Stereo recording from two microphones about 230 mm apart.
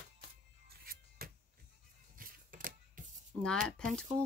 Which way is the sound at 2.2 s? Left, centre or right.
Right.